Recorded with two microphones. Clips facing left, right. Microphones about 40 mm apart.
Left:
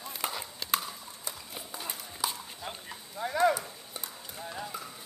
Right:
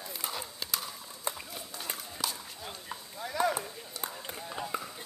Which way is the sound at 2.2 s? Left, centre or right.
Centre.